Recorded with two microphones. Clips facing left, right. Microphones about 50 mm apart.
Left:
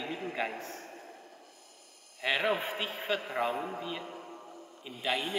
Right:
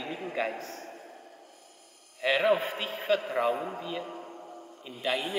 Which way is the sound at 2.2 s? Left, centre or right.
Centre.